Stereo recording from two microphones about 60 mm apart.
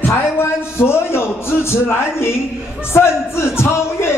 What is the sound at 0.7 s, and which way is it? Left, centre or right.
A man's voice, left.